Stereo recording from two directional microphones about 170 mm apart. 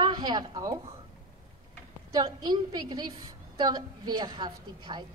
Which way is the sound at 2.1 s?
20° right (ahead or behind).